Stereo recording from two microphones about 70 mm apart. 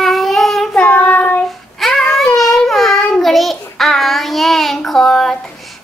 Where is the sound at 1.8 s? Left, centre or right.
Centre.